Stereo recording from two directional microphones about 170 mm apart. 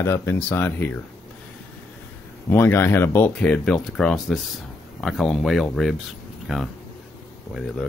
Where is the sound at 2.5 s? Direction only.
15° left (ahead or behind).